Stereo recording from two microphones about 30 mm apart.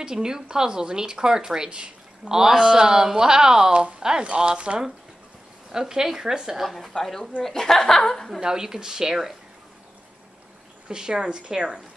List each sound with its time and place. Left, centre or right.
0.0 s speech: right
4.2 s speech: right
5.7 s speech: right
6.9 s a woman's voice: left
8.4 s speech: right
10.9 s speech: right